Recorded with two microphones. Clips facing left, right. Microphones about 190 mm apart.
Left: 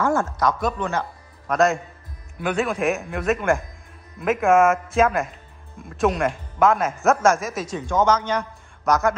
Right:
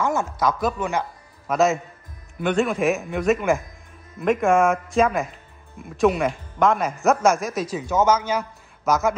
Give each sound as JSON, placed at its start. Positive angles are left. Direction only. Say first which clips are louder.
{"t": 0.0, "sound": "speech", "louder": "left 2 dB", "side_deg": -20}
{"t": 0.4, "sound": "speech", "louder": "even", "side_deg": 0}